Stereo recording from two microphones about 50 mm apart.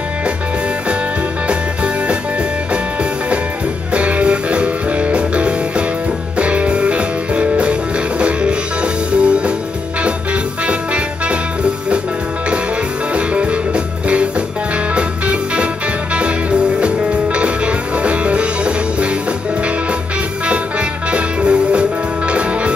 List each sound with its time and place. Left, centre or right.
2.7 s music: right
10.7 s music: right
13.1 s music: right
21.1 s music: right